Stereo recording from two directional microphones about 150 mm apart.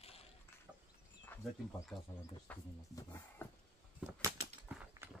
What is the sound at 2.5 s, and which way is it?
Speech, 10° left (ahead or behind).